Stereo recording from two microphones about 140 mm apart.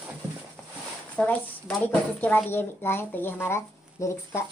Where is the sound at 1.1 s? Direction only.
10° left (ahead or behind).